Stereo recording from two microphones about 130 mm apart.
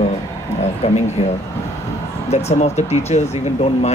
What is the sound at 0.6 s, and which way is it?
Speech, 60° left (ahead or behind).